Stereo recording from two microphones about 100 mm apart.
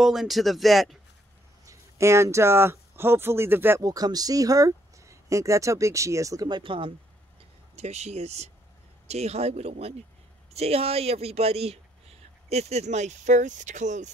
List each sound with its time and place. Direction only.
0.0 s speech: 5° right (ahead or behind)
1.7 s speech: 30° right (ahead or behind)
3.8 s speech: 40° right (ahead or behind)
6.5 s speech: 60° right (ahead or behind)
7.7 s speech: 90° right